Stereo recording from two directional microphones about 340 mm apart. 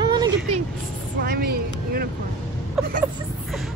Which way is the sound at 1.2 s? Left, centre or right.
Right.